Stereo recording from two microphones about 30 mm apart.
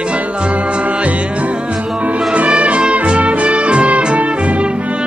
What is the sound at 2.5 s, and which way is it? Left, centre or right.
Music, right.